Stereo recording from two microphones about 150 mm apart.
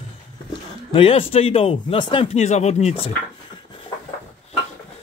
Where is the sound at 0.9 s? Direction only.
40° left (ahead or behind).